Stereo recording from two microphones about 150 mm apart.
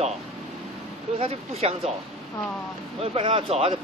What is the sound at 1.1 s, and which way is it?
Speech, 40° right (ahead or behind).